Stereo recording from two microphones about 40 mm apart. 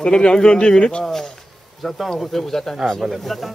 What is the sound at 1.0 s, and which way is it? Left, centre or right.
Speech, centre.